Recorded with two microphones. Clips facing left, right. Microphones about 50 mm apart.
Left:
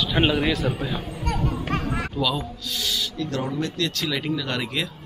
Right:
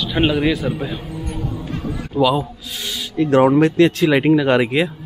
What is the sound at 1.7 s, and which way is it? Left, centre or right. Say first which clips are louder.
Chatter: even; left.